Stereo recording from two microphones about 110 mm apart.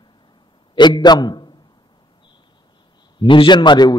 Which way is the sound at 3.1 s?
50° left (ahead or behind).